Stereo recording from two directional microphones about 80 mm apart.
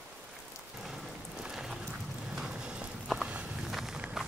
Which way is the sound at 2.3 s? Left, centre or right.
Centre.